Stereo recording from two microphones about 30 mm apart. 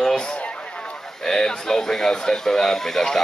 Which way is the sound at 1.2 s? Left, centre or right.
Centre.